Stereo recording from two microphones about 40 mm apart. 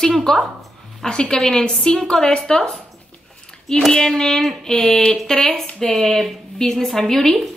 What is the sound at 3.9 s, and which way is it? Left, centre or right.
A woman's voice, centre.